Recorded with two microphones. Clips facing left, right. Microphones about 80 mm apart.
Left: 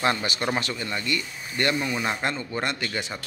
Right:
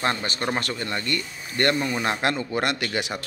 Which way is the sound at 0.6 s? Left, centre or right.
Right.